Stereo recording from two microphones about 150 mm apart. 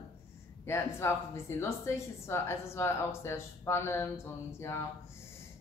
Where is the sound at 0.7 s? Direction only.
15° left (ahead or behind).